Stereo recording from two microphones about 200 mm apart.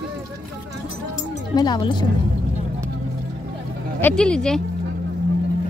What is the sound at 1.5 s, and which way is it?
Speech, 20° left (ahead or behind).